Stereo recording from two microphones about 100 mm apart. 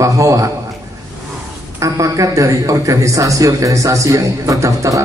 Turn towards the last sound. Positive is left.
turn(degrees=-35)  # may be behind; listen again after turning